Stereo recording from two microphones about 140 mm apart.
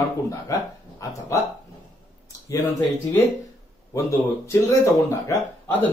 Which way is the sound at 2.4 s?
25° left (ahead or behind).